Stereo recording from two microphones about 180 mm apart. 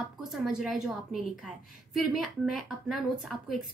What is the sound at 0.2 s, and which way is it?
Speech, 5° right (ahead or behind).